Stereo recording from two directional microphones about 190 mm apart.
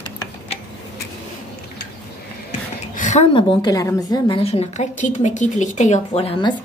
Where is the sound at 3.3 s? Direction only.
20° left (ahead or behind).